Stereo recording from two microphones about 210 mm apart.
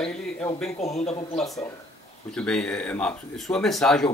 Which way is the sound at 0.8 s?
30° left (ahead or behind).